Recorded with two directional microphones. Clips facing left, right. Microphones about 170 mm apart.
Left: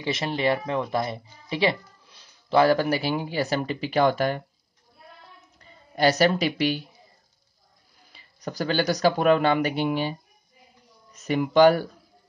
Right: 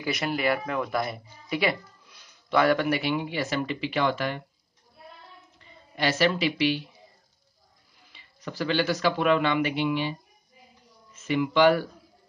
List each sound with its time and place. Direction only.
0.0 s speech: 25° left (ahead or behind)
5.6 s speech: 40° left (ahead or behind)
8.1 s speech: 40° left (ahead or behind)